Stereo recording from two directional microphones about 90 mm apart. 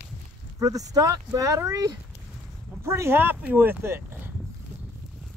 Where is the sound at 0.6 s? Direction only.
40° right (ahead or behind); by 4.3 s 25° right (ahead or behind).